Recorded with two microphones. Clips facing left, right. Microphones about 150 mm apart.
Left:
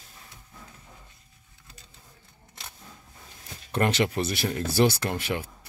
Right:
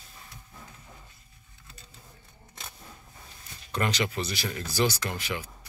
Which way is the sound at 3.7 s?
55° left (ahead or behind).